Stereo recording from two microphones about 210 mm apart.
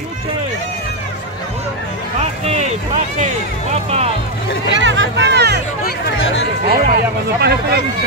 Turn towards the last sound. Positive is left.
turn(degrees=-50)  # may be behind; listen again after turning